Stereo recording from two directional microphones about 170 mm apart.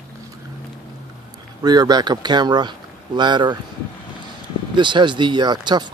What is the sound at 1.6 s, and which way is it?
Speech, 25° right (ahead or behind).